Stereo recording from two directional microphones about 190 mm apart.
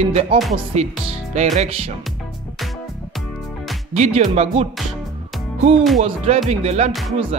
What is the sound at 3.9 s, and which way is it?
Speech, 35° right (ahead or behind).